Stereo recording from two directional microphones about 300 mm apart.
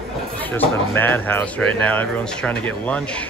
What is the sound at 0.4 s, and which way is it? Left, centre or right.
Speech, centre.